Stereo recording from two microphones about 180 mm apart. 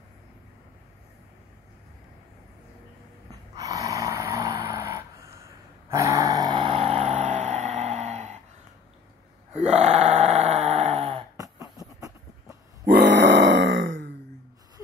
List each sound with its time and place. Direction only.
3.3 s snoring: 20° right (ahead or behind)
5.9 s dog: 15° right (ahead or behind); by 8.4 s 40° right (ahead or behind)
9.5 s a sound: 40° right (ahead or behind)
12.8 s grunt: 65° right (ahead or behind); by 14.1 s 90° right